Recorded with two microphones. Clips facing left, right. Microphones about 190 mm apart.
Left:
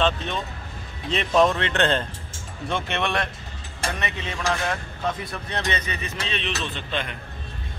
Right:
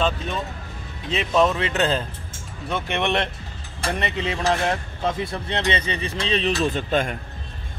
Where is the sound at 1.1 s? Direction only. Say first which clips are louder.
Even; 5° right (ahead or behind).